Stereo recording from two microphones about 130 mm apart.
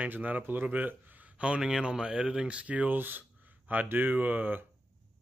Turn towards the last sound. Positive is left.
turn(degrees=-15)  # may be behind; listen again after turning